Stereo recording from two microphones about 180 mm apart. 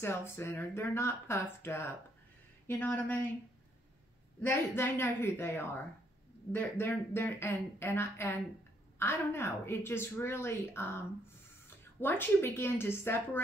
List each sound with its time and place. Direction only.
0.0 s a woman's voice: 15° left (ahead or behind)
4.4 s a woman's voice: 10° left (ahead or behind)